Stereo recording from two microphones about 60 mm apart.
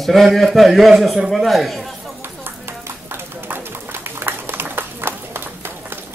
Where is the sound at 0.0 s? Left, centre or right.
Centre.